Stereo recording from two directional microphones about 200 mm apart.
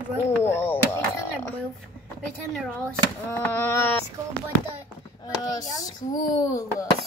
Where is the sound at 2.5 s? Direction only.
5° left (ahead or behind).